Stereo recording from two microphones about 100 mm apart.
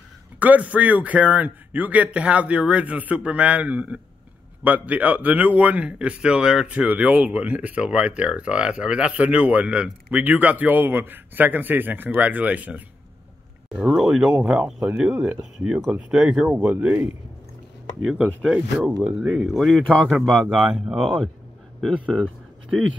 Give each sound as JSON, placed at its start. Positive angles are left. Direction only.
{"t": 0.4, "sound": "speech", "side_deg": -15}
{"t": 16.5, "sound": "speech", "side_deg": -20}
{"t": 18.0, "sound": "speech", "side_deg": -5}